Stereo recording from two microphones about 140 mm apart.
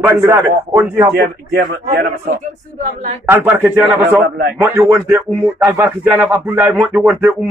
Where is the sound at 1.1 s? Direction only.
90° right.